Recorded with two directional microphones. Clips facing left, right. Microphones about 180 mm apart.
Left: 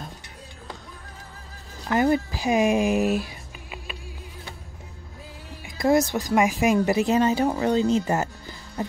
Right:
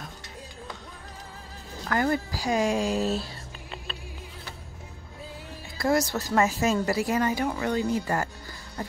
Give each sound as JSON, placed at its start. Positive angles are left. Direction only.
{"t": 1.9, "sound": "speech", "side_deg": 20}
{"t": 5.8, "sound": "speech", "side_deg": 20}